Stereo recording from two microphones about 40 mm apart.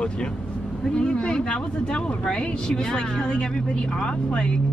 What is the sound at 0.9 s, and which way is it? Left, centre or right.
A woman's voice, left.